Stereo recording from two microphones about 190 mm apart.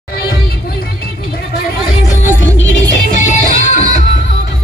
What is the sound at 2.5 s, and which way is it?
Music, 75° left (ahead or behind).